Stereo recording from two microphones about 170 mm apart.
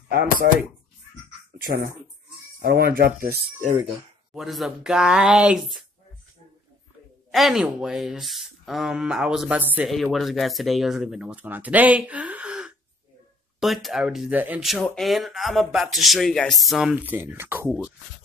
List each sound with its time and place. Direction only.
0.4 s speech: 60° right (ahead or behind)
4.3 s speech: centre (ahead or behind)
7.2 s speech: centre (ahead or behind)